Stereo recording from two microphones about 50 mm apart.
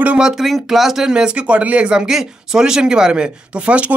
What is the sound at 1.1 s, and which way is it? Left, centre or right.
Speech, right.